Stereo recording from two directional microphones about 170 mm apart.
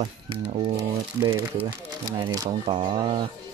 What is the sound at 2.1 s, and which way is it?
Speech, 25° right (ahead or behind).